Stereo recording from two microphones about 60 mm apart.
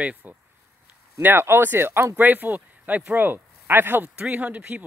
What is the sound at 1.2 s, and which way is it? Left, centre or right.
Speech, right.